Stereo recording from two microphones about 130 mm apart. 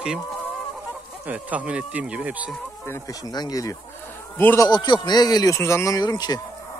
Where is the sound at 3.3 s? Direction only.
30° left (ahead or behind).